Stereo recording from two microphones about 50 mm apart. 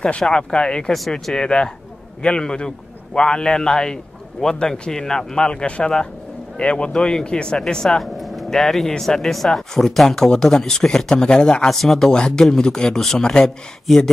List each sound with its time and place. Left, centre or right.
0.2 s speech: centre
8.0 s speech: centre
12.1 s speech: centre